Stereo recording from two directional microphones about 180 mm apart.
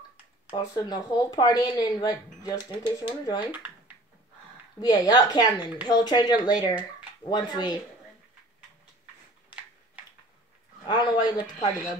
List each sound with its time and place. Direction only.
0.5 s speech: 20° left (ahead or behind)
3.5 s a sound: 10° right (ahead or behind)
4.7 s speech: 20° left (ahead or behind)
10.9 s speech: 25° left (ahead or behind)